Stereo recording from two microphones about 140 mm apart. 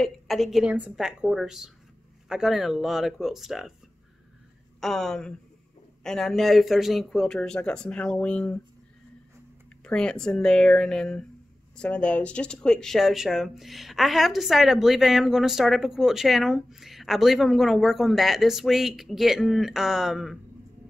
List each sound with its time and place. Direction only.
0.0 s speech: centre (ahead or behind)
4.7 s speech: centre (ahead or behind)
9.8 s speech: 5° left (ahead or behind)